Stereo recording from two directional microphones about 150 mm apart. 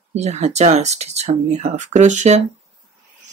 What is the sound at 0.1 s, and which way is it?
Speech, 50° right (ahead or behind).